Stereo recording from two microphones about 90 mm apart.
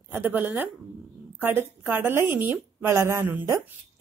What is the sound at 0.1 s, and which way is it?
A woman's voice, 20° right (ahead or behind).